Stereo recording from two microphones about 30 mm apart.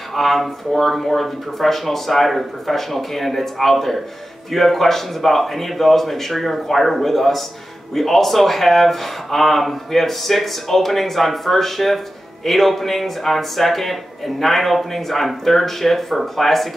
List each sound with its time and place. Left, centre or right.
0.1 s a man's voice: centre